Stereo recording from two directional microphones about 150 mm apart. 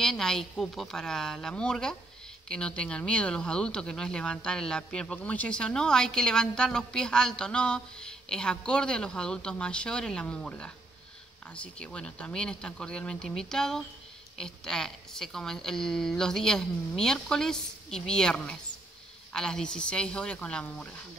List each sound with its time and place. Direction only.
0.0 s a woman's voice: 5° left (ahead or behind)